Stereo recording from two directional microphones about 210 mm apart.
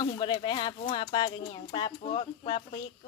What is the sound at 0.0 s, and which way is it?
Speech, 20° left (ahead or behind).